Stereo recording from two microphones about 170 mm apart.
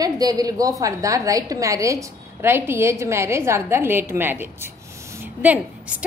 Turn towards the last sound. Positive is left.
turn(degrees=-10)  # may be behind; listen again after turning